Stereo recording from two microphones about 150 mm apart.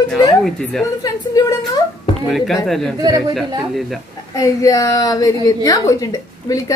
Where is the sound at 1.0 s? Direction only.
25° left (ahead or behind).